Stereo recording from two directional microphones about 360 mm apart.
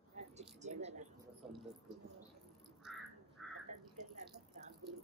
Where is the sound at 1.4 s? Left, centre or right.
Centre.